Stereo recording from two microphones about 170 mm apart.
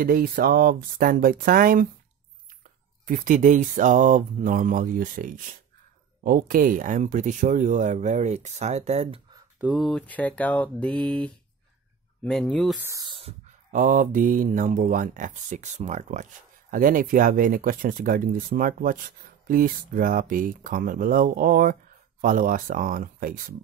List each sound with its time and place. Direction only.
0.0 s speech: 60° right (ahead or behind)
3.1 s speech: 50° right (ahead or behind)
9.6 s speech: centre (ahead or behind)
12.8 s speech: 20° right (ahead or behind)
13.7 s speech: 50° right (ahead or behind)